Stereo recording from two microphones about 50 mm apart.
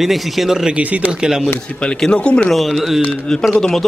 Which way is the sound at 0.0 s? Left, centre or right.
Centre.